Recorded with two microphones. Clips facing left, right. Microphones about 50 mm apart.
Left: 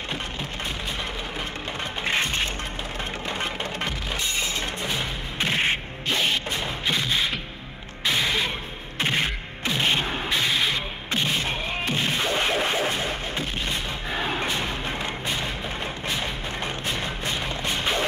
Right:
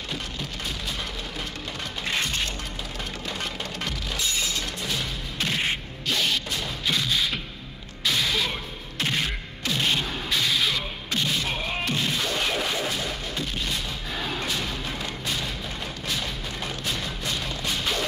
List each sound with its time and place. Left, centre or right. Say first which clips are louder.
2.0 s music: left 3 dB; left